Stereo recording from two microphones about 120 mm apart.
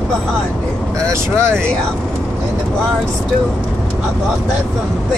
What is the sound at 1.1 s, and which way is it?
Speech, 20° right (ahead or behind).